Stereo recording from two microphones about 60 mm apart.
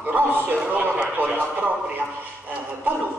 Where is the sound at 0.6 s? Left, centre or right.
Right.